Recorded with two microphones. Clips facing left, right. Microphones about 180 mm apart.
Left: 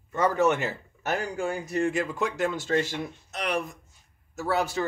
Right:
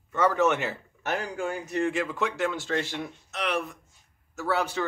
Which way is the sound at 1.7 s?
40° left (ahead or behind).